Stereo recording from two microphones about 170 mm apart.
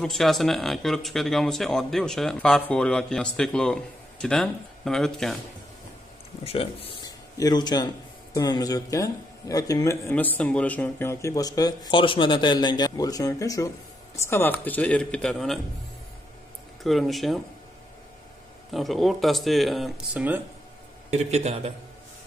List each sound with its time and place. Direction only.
0.0 s speech: centre (ahead or behind)
6.4 s speech: 35° left (ahead or behind)
7.1 s a sound: 20° left (ahead or behind)
8.4 s speech: 20° left (ahead or behind); by 15.6 s centre (ahead or behind)
16.8 s speech: centre (ahead or behind)
18.7 s speech: centre (ahead or behind)
21.1 s speech: 40° right (ahead or behind)